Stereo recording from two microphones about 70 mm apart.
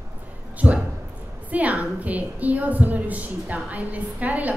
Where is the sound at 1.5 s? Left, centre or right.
Right.